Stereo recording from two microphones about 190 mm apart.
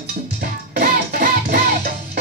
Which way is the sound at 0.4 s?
55° right (ahead or behind).